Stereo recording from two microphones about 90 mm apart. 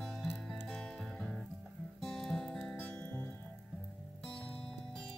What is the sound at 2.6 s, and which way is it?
Music, 15° left (ahead or behind).